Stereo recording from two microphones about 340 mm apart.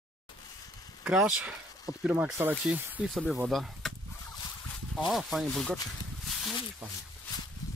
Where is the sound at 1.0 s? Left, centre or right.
Centre.